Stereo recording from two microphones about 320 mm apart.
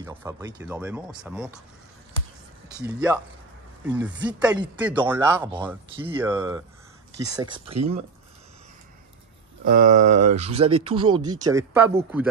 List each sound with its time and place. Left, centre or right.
0.0 s speech: centre
3.8 s speech: centre
9.7 s speech: right; by 12.0 s centre